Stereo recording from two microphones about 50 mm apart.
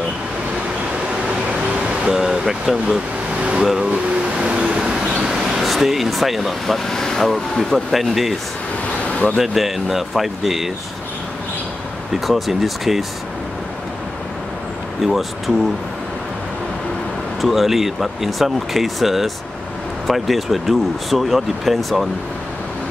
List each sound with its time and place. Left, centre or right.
2.0 s speech: centre
3.8 s vehicle: right
5.2 s a sound: centre
5.7 s speech: centre
6.9 s speech: centre
9.4 s speech: centre
12.1 s speech: centre
15.0 s speech: centre
17.4 s speech: centre